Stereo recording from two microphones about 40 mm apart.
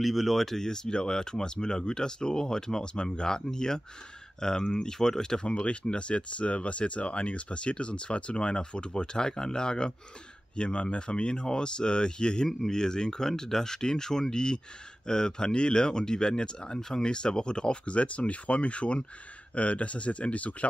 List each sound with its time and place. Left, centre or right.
0.0 s speech: centre; by 12.4 s left
12.4 s speech: centre; by 20.5 s left